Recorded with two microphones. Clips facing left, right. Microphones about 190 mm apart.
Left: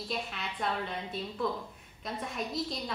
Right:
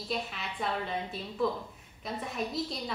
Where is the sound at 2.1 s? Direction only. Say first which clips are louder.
Right 1 dB; centre (ahead or behind).